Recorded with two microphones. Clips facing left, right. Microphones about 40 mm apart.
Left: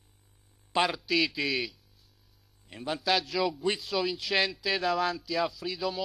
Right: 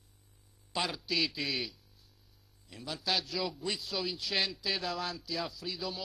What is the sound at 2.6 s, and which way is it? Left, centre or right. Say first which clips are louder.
Speech: left 8 dB; left.